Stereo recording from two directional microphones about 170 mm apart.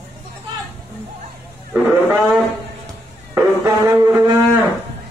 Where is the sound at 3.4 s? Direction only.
15° right (ahead or behind).